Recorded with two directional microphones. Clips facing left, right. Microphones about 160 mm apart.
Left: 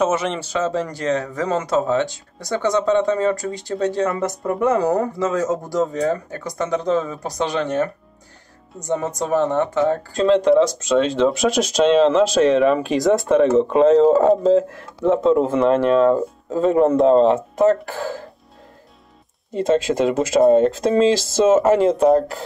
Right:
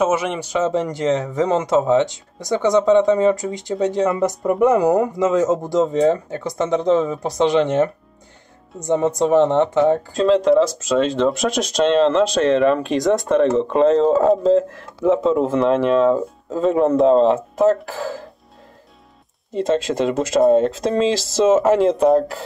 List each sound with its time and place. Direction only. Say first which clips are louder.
0.0 s a man's voice: right 1 dB; 10° right (ahead or behind)
10.1 s speech: left 2 dB; centre (ahead or behind)
19.5 s speech: left 1 dB; centre (ahead or behind)